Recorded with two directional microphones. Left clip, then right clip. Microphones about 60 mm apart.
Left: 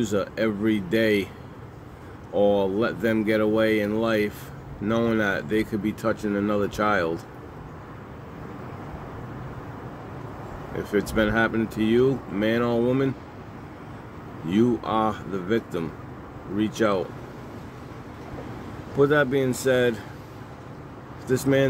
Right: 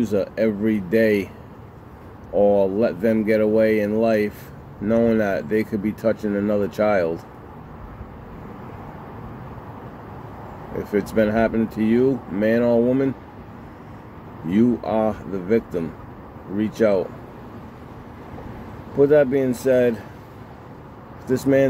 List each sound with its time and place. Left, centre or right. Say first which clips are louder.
0.0 s speech: right 4 dB; left
2.3 s speech: right 4 dB; left
2.6 s speech: right 4 dB; left
10.8 s speech: right 3 dB; left
14.5 s speech: right 2 dB; left
18.9 s speech: right 5 dB; left
21.3 s speech: right 4 dB; left